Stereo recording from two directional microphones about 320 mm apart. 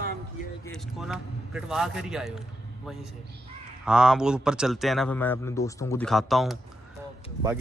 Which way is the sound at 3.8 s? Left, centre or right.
Centre.